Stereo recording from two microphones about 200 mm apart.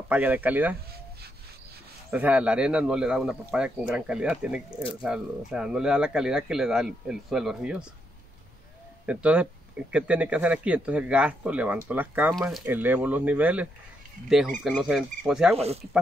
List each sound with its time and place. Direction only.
0.1 s speech: 10° right (ahead or behind)
2.0 s a man's voice: 5° right (ahead or behind)
9.0 s a man's voice: 5° right (ahead or behind)
15.5 s speech: 30° right (ahead or behind)